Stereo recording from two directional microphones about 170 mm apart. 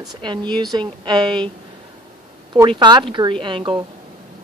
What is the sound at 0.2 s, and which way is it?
Speech, 30° right (ahead or behind).